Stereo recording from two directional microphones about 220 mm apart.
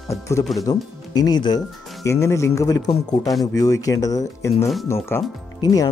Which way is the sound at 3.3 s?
Centre (ahead or behind).